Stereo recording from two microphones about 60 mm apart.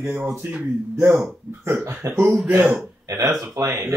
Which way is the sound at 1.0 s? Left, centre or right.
Centre.